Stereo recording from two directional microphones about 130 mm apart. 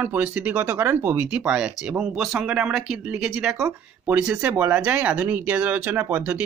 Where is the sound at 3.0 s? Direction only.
10° right (ahead or behind).